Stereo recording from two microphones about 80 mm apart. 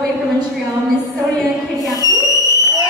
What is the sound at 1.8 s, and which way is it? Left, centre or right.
Whistle, left.